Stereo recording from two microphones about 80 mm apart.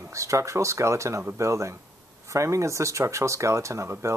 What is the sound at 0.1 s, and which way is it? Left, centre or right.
Speech, right.